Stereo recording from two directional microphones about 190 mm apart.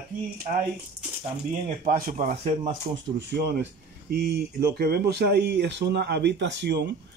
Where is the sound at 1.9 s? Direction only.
45° right (ahead or behind).